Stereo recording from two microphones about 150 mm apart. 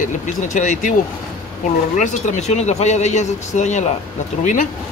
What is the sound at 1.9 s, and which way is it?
Speech, 55° left (ahead or behind).